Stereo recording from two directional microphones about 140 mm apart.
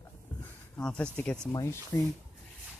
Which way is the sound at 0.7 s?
5° left (ahead or behind).